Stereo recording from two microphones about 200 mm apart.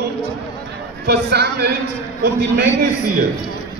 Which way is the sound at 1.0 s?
55° right (ahead or behind).